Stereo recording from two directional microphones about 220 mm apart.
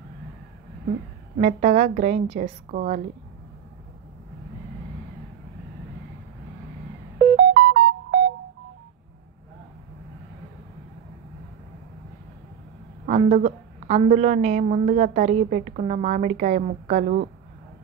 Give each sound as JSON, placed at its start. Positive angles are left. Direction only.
{"t": 1.4, "sound": "a woman's voice", "side_deg": -35}
{"t": 7.3, "sound": "music", "side_deg": -50}
{"t": 13.0, "sound": "a woman's voice", "side_deg": -30}